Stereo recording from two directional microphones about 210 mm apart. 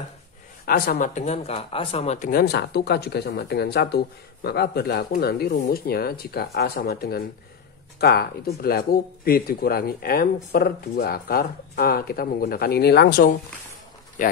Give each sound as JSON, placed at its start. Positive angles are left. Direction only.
{"t": 0.7, "sound": "speech", "side_deg": 45}